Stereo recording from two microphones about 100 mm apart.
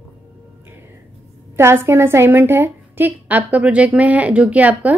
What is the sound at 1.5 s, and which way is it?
A woman's voice, 25° right (ahead or behind).